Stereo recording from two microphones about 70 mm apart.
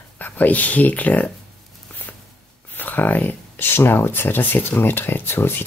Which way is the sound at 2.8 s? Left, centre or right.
Left.